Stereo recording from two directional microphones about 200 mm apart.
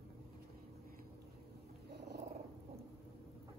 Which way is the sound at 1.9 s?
55° right (ahead or behind).